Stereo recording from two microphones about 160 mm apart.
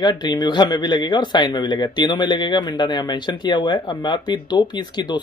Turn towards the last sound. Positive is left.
turn(degrees=25)  # may be behind; listen again after turning